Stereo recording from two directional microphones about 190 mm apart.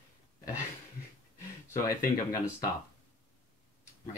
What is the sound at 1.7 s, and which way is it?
Speech, 15° left (ahead or behind).